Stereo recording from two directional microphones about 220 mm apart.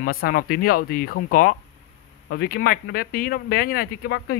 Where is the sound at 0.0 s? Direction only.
40° left (ahead or behind).